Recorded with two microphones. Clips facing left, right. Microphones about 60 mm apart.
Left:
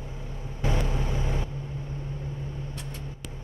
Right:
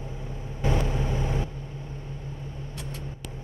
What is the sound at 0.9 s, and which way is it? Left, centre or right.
Vehicle, right.